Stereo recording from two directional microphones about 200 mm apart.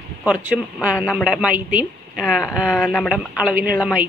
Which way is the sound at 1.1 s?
5° right (ahead or behind).